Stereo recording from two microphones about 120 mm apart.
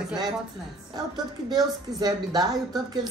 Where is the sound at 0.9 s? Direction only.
35° right (ahead or behind).